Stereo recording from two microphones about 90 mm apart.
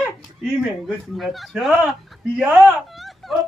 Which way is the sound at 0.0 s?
Centre (ahead or behind).